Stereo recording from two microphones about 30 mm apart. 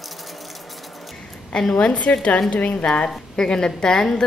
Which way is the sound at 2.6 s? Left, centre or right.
Left.